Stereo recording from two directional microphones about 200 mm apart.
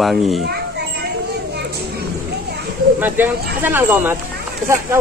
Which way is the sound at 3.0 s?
10° right (ahead or behind).